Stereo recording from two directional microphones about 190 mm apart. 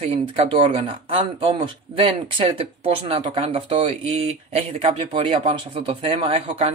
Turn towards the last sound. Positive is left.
turn(degrees=-30)  # may be behind; listen again after turning